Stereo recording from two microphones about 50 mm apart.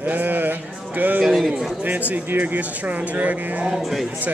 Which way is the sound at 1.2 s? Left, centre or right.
Centre.